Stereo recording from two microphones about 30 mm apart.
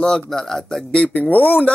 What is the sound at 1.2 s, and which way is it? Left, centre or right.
Speech, left.